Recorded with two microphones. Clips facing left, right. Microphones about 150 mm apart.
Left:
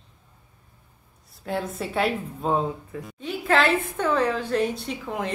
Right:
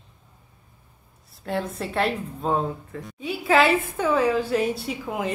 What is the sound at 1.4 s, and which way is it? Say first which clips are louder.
A woman's voice: right 1 dB; centre (ahead or behind).